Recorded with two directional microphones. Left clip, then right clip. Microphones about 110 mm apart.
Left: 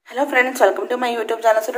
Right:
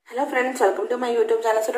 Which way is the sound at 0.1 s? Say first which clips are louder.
Left 5 dB; 40° left (ahead or behind).